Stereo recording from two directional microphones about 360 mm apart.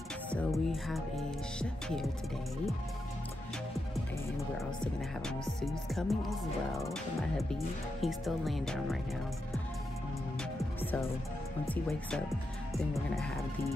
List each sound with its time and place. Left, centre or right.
0.3 s music: centre
5.2 s music: centre
10.6 s music: centre